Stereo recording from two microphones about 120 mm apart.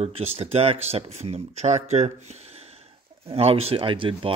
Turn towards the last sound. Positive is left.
turn(degrees=-45)  # may be behind; listen again after turning